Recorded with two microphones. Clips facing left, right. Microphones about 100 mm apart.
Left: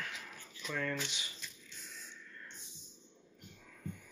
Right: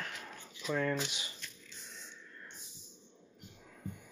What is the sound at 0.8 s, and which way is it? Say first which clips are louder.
Speech: right 3 dB; 25° right (ahead or behind).